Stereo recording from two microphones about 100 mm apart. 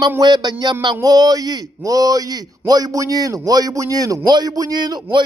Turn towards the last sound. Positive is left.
turn(degrees=-45)  # may be behind; listen again after turning